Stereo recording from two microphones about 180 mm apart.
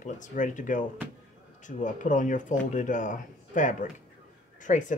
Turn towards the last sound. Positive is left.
turn(degrees=45)  # may be behind; listen again after turning